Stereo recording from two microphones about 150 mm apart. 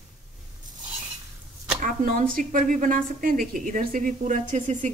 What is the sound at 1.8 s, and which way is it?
A woman's voice, 65° right (ahead or behind).